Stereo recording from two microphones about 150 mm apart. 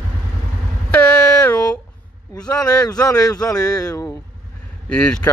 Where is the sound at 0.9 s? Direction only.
10° left (ahead or behind).